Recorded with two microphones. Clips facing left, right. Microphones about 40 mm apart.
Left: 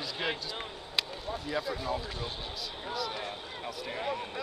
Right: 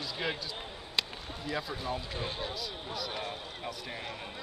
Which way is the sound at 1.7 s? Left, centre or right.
Right.